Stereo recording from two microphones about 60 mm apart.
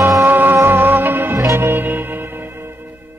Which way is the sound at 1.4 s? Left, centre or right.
Right.